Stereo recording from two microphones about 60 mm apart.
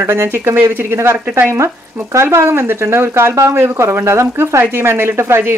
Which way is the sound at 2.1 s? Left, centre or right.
Right.